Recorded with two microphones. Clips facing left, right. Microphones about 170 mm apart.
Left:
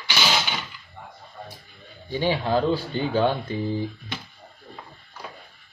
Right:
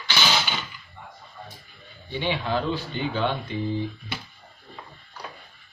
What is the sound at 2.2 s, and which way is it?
Speech, 40° left (ahead or behind).